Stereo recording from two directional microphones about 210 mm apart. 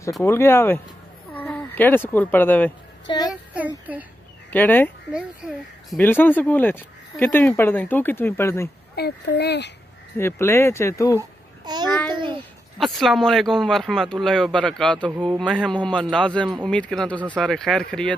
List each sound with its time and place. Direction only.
0.2 s speech: 10° left (ahead or behind)
3.3 s a child's voice: 5° right (ahead or behind)
4.5 s speech: 10° left (ahead or behind)
5.1 s speech: centre (ahead or behind)
8.9 s speech: 50° left (ahead or behind)
10.1 s speech: 10° left (ahead or behind)
11.1 s babbling: 20° right (ahead or behind)
12.1 s a child's voice: 20° right (ahead or behind)
12.7 s speech: centre (ahead or behind)